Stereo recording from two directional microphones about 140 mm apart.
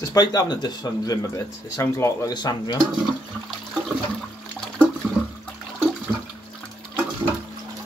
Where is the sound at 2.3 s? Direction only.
30° left (ahead or behind).